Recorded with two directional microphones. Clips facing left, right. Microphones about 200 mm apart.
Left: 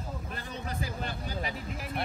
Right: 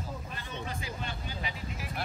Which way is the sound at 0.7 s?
40° left (ahead or behind).